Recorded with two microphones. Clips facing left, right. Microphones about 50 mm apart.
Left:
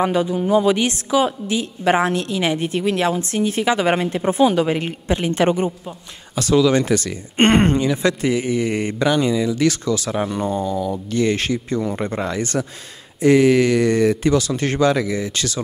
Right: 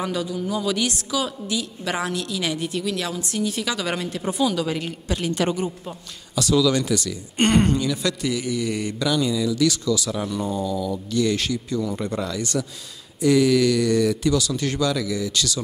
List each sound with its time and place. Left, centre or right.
0.0 s speech: left